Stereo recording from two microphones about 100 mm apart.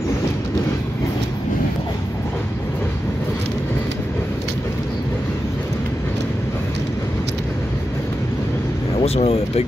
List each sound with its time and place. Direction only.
9.0 s speech: 85° left